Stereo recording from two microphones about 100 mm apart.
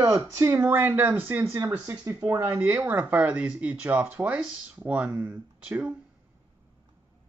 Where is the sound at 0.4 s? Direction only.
25° right (ahead or behind).